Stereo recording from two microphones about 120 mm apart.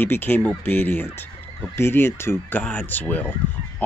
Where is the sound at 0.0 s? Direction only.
15° left (ahead or behind).